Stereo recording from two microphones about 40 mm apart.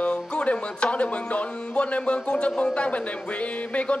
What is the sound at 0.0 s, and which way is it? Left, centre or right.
Speech, left.